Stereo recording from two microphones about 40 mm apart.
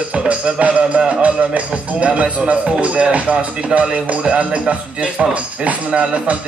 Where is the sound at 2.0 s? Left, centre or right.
Right.